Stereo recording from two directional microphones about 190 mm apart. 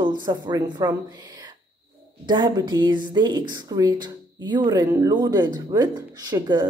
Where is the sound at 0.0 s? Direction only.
25° right (ahead or behind).